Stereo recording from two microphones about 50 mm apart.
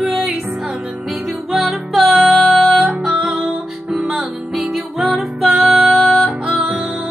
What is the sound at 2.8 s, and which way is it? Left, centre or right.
Music, centre.